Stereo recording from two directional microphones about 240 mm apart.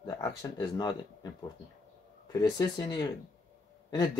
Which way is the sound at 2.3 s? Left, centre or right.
Centre.